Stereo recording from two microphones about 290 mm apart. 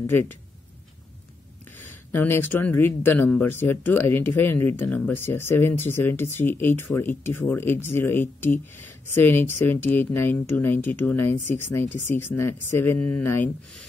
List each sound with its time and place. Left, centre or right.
0.0 s speech: centre
1.8 s speech: centre